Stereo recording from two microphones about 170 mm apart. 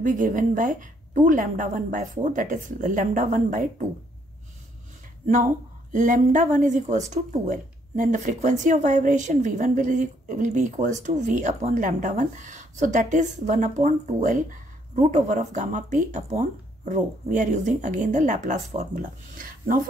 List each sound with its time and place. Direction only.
0.0 s speech: 50° right (ahead or behind)
5.9 s speech: 50° right (ahead or behind)